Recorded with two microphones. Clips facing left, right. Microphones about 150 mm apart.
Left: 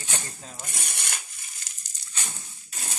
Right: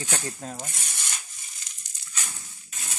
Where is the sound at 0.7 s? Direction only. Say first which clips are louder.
Left 2 dB; 60° left (ahead or behind).